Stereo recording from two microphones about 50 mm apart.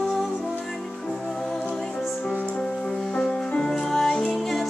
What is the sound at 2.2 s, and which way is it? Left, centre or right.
Music, left.